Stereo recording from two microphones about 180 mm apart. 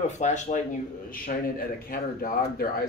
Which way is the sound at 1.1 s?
50° left (ahead or behind).